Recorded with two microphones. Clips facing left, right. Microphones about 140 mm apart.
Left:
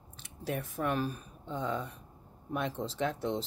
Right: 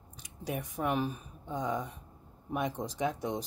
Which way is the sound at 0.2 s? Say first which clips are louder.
Left 1 dB; 15° right (ahead or behind).